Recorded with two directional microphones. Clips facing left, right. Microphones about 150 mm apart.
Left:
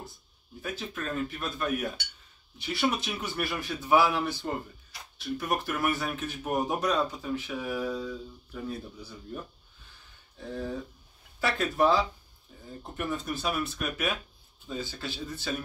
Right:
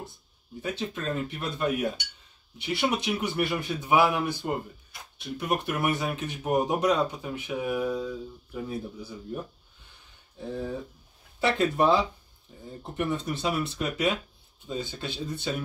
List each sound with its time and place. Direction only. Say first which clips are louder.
0.6 s a man's voice: right 4 dB; 20° right (ahead or behind)
10.3 s speech: right 2 dB; 15° right (ahead or behind)